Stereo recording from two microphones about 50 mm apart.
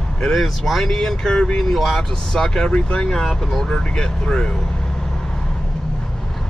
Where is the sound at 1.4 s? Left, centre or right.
Centre.